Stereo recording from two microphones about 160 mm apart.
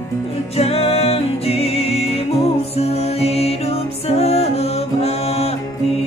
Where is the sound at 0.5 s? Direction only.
40° left (ahead or behind).